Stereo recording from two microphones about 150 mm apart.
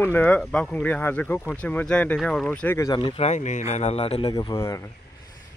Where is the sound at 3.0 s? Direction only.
45° left (ahead or behind).